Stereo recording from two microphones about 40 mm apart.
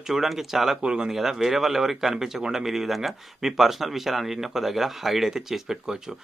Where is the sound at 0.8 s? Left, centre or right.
Right.